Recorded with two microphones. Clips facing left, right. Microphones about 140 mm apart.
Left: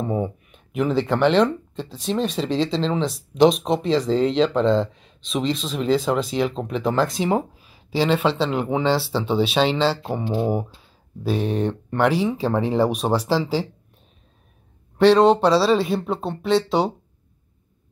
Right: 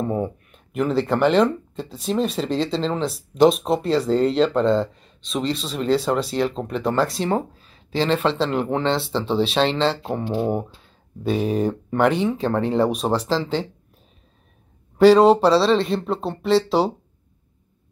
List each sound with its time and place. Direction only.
0.0 s speech: 5° left (ahead or behind)
7.2 s speech: 10° left (ahead or behind)
15.0 s speech: 5° right (ahead or behind)